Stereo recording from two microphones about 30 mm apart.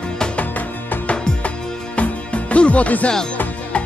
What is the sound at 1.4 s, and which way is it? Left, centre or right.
Music, left.